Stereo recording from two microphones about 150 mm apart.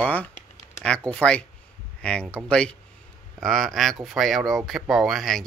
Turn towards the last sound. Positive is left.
turn(degrees=0)  # may be behind; listen again after turning